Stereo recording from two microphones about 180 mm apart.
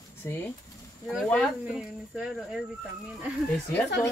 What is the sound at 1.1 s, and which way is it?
Speech, 5° left (ahead or behind).